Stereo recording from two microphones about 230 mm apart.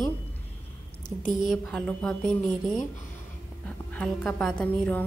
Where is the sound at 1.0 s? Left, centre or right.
Left.